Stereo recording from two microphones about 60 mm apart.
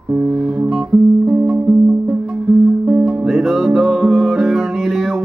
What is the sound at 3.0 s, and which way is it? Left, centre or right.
Music, centre.